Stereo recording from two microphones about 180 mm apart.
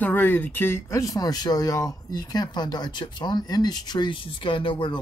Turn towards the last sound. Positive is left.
turn(degrees=30)  # may be behind; listen again after turning